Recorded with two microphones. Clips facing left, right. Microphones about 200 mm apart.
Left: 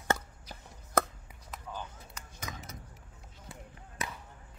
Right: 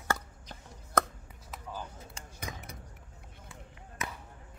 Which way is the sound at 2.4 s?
60° right (ahead or behind).